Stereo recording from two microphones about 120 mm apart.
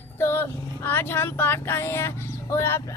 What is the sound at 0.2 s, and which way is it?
Speech, 20° left (ahead or behind).